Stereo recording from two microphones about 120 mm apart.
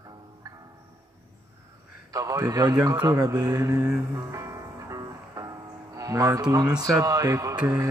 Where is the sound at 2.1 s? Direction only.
30° right (ahead or behind).